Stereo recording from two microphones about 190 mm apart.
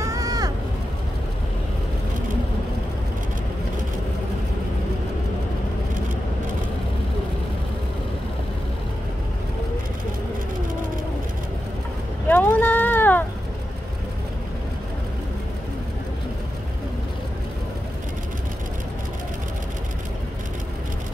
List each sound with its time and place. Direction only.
0.0 s vehicle: 20° right (ahead or behind)
12.3 s vehicle: 10° left (ahead or behind)